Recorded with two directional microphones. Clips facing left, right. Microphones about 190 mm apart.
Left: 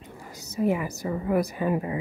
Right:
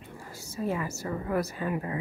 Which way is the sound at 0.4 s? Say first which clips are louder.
Left 6 dB; 20° left (ahead or behind).